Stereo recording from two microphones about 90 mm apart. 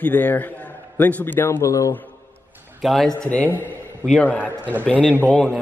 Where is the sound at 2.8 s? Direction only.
Centre (ahead or behind).